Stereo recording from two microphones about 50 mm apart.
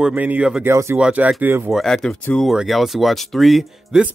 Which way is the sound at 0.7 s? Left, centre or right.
Right.